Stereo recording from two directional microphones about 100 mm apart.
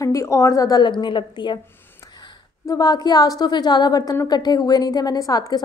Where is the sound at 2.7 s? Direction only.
40° left (ahead or behind).